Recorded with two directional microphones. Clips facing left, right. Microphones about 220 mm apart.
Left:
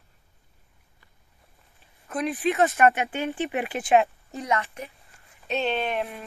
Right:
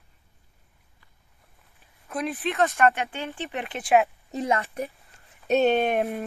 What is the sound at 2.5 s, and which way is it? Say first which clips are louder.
Speech: left 1 dB; 15° left (ahead or behind).